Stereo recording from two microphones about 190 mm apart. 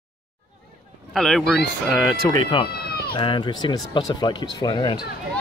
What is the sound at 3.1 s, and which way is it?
Speech, 25° left (ahead or behind).